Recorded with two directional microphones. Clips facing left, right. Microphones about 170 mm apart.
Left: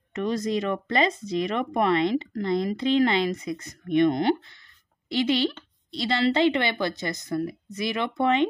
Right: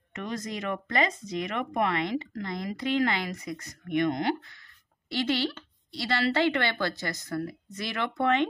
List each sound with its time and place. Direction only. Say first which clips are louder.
0.1 s speech: left 8 dB; 30° left (ahead or behind)
5.1 s speech: left 4 dB; 15° left (ahead or behind)